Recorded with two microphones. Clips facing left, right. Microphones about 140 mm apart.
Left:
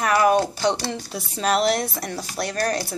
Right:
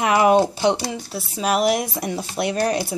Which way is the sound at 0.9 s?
5° right (ahead or behind).